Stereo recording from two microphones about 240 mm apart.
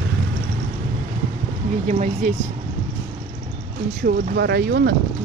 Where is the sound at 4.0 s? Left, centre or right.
Right.